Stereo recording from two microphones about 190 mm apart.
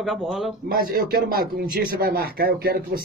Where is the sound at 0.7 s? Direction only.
50° right (ahead or behind).